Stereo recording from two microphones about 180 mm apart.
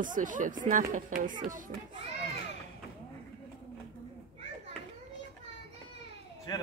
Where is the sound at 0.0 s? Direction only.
45° right (ahead or behind).